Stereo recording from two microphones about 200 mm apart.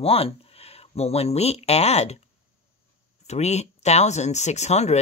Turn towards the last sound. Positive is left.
turn(degrees=35)  # may be behind; listen again after turning